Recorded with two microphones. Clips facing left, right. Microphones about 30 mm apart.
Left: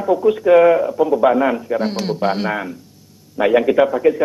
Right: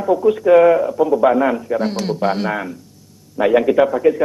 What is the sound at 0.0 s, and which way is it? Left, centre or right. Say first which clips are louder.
A man's voice: even; centre.